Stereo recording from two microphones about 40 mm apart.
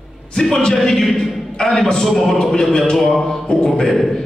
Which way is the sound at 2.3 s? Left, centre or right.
Centre.